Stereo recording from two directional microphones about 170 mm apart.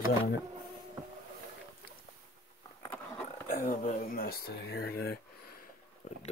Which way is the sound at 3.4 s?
55° left (ahead or behind).